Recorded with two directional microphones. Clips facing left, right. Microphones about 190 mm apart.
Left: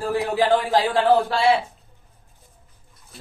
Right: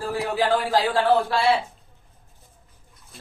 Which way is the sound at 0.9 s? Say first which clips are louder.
Left 3 dB; 15° left (ahead or behind).